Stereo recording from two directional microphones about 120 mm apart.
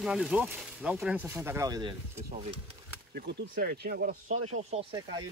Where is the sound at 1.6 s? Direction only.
35° right (ahead or behind).